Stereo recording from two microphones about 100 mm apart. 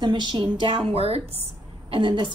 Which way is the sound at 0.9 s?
85° right.